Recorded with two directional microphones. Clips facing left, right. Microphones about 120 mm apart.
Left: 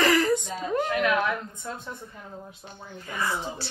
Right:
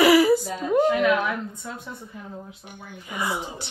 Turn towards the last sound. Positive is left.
turn(degrees=-15)  # may be behind; listen again after turning